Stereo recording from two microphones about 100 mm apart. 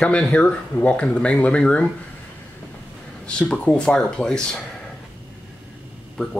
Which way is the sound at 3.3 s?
10° left (ahead or behind).